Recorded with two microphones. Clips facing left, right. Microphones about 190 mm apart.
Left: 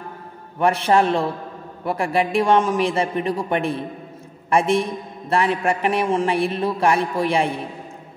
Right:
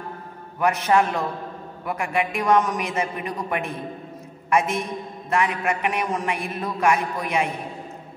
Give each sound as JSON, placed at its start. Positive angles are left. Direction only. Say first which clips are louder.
{"t": 0.6, "sound": "a man's voice", "louder": "left 3 dB", "side_deg": 30}